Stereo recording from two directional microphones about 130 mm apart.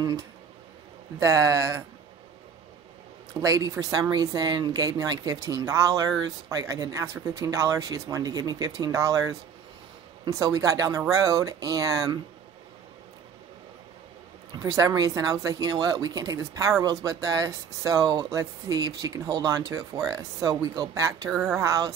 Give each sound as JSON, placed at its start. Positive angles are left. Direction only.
{"t": 1.2, "sound": "speech", "side_deg": -25}
{"t": 3.3, "sound": "speech", "side_deg": -25}
{"t": 14.6, "sound": "speech", "side_deg": -25}
{"t": 21.3, "sound": "speech", "side_deg": 0}
{"t": 21.5, "sound": "speech", "side_deg": -25}